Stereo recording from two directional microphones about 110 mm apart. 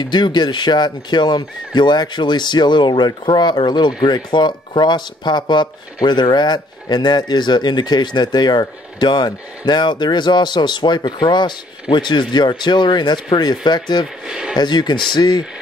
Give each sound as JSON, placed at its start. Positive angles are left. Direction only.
{"t": 0.0, "sound": "speech", "side_deg": 40}
{"t": 14.2, "sound": "speech", "side_deg": -5}
{"t": 14.5, "sound": "speech", "side_deg": 40}